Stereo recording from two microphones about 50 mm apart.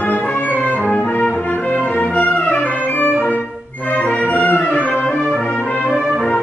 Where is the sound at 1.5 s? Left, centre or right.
Left.